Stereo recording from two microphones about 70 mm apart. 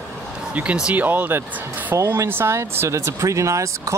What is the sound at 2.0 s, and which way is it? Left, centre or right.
Speech, right.